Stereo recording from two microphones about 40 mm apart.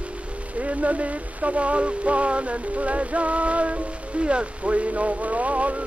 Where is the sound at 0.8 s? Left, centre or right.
Right.